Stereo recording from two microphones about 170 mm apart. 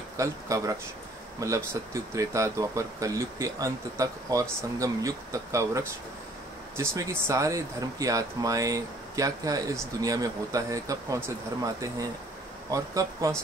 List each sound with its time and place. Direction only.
0.2 s speech: 20° right (ahead or behind)